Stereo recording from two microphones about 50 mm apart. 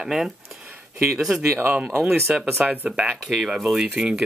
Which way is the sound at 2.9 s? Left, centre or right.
Centre.